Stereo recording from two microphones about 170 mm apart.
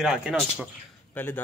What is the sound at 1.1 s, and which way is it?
Speech, 10° left (ahead or behind).